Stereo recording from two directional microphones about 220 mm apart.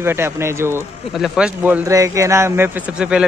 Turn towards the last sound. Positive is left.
turn(degrees=-5)  # may be behind; listen again after turning